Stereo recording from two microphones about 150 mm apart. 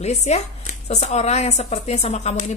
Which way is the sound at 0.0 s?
50° left (ahead or behind).